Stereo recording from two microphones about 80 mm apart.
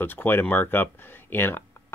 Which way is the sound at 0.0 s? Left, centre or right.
Left.